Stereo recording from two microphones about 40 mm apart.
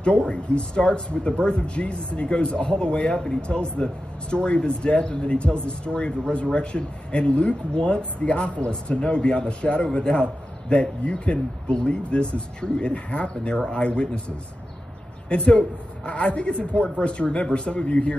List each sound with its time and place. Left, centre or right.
0.0 s speech: left
3.1 s speech: centre
3.4 s speech: left
15.3 s a man's voice: left
16.3 s speech: left